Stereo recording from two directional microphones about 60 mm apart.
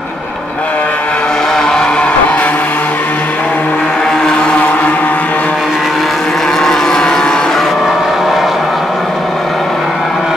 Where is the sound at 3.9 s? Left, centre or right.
Centre; by 5.5 s left.